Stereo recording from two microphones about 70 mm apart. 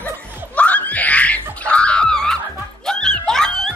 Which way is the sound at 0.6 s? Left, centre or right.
Left.